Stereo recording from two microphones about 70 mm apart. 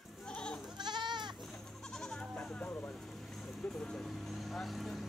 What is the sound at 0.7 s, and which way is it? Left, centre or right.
Goat, right.